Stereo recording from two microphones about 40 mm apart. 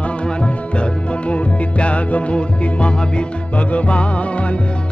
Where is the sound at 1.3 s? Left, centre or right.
Left.